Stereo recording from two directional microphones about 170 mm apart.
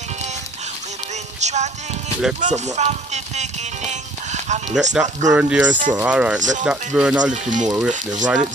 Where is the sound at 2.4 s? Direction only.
40° right (ahead or behind).